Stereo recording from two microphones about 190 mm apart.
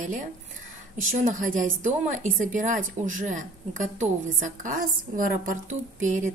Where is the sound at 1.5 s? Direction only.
40° right (ahead or behind).